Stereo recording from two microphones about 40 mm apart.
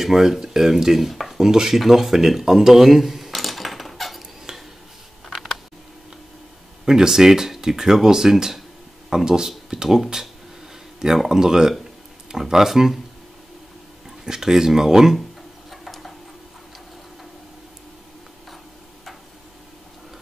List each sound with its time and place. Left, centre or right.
0.0 s dishes: centre
4.5 s a sound: centre
6.9 s speech: centre
11.2 s speech: centre
14.2 s speech: centre
15.7 s a sound: centre